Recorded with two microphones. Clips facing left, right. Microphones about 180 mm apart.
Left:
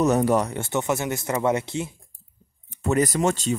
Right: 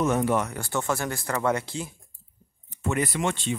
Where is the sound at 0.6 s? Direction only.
20° left (ahead or behind).